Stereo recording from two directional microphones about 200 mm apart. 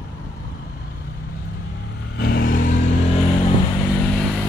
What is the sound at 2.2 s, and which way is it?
Vehicle, 50° left (ahead or behind).